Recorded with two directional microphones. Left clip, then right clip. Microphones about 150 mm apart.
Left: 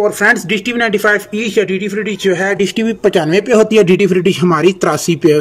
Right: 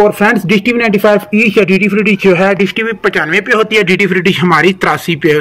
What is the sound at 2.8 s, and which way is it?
Speech, 25° left (ahead or behind).